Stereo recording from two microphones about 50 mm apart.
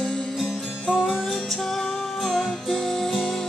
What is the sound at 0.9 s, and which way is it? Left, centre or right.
Music, centre.